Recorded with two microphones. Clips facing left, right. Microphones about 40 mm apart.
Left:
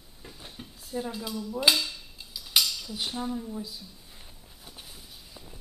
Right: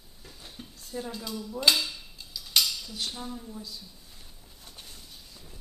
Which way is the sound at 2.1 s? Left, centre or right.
Centre.